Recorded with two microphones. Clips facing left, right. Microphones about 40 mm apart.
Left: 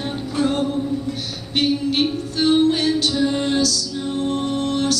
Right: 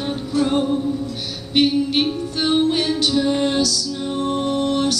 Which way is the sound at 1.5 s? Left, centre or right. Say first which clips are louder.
Right 3 dB; right.